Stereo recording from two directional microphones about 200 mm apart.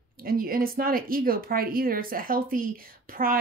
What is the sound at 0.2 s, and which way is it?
A woman's voice, 45° right (ahead or behind).